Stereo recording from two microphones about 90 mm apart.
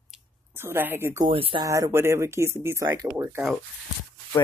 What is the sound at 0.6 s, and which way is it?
Speech, 25° right (ahead or behind).